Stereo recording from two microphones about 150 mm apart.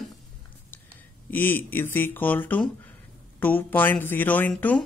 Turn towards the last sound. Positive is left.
turn(degrees=10)  # may be behind; listen again after turning